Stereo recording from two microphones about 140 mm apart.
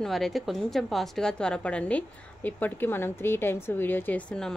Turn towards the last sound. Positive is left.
turn(degrees=5)  # may be behind; listen again after turning